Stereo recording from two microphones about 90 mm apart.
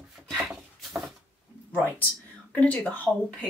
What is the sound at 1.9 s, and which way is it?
Speech, 15° left (ahead or behind).